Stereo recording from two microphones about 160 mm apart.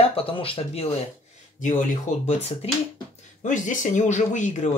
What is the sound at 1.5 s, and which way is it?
Speech, 50° left (ahead or behind).